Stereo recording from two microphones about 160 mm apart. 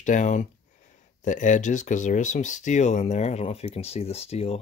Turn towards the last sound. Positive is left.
turn(degrees=40)  # may be behind; listen again after turning